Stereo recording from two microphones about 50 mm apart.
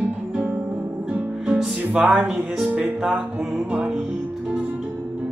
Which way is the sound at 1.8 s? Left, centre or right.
Right.